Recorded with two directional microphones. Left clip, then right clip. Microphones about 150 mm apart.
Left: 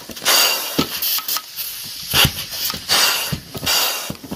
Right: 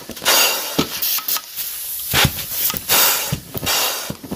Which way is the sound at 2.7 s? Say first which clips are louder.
Left 1 dB; 45° right (ahead or behind).